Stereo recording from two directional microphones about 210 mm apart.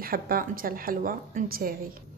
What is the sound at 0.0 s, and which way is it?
A woman's voice, 45° right (ahead or behind).